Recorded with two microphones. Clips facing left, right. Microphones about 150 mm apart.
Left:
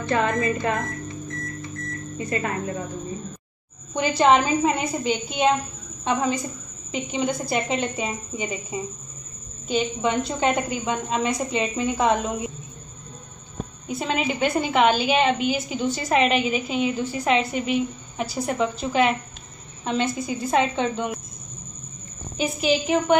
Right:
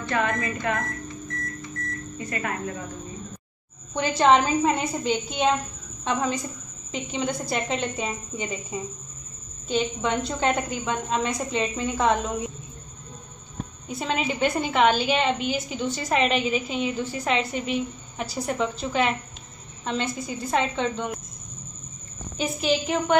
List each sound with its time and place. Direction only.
0.1 s speech: 30° left (ahead or behind)
2.1 s speech: 25° left (ahead or behind)
3.9 s a woman's voice: 5° left (ahead or behind)
9.7 s a woman's voice: 10° left (ahead or behind)
13.8 s a woman's voice: 5° left (ahead or behind)
22.4 s a woman's voice: 10° left (ahead or behind)